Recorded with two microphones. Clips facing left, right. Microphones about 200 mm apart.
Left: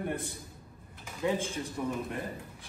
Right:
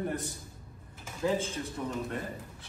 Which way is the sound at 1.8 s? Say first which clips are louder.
Left 3 dB; 10° left (ahead or behind).